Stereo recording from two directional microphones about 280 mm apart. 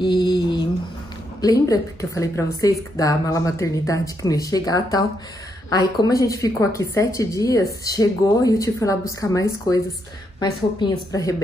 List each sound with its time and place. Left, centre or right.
0.0 s mantra: centre
1.4 s speech: centre